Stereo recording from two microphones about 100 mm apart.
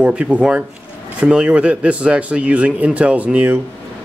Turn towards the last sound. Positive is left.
turn(degrees=-15)  # may be behind; listen again after turning